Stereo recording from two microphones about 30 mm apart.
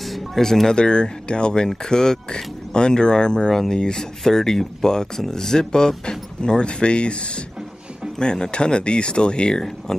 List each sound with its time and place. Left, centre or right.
0.0 s music: centre
0.4 s speech: centre
0.7 s speech: left